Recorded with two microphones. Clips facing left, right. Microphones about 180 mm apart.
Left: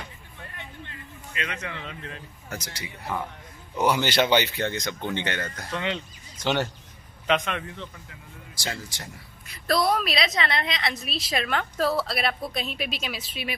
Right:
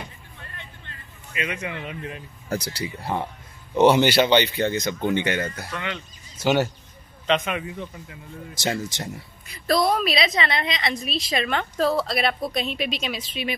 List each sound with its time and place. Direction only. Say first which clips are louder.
1.3 s speech: right 4 dB; 10° right (ahead or behind)
2.5 s speech: right 9 dB; 35° right (ahead or behind)
4.2 s a woman's voice: right 3 dB; 5° left (ahead or behind)
5.7 s speech: left 2 dB; 25° left (ahead or behind)
6.3 s speech: right 5 dB; 10° right (ahead or behind)
8.5 s speech: right 8 dB; 20° right (ahead or behind)
9.7 s a woman's voice: right 3 dB; centre (ahead or behind)